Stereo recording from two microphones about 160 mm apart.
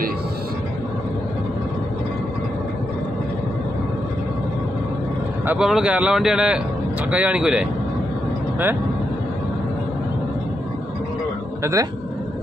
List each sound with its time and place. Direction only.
5.5 s a man's voice: 5° right (ahead or behind)
11.6 s speech: 20° right (ahead or behind)